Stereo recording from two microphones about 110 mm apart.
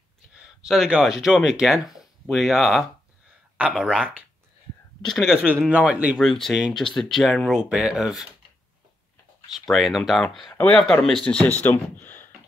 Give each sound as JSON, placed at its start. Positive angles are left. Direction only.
{"t": 0.3, "sound": "speech", "side_deg": -5}
{"t": 6.1, "sound": "speech", "side_deg": 5}
{"t": 9.7, "sound": "speech", "side_deg": 0}